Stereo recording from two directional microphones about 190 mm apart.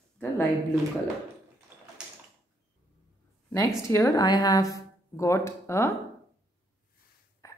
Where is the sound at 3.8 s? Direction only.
15° left (ahead or behind).